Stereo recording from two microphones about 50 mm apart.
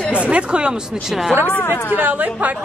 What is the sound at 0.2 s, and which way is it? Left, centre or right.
Speech, right.